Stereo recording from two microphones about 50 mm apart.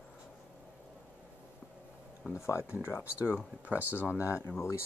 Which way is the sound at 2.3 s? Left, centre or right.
Right.